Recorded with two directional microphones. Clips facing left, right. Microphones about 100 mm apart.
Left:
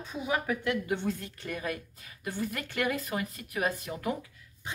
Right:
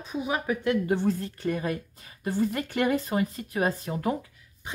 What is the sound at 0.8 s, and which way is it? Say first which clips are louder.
A woman's voice: right 6 dB; 35° right (ahead or behind).